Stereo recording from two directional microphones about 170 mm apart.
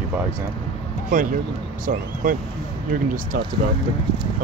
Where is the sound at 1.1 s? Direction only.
50° right (ahead or behind).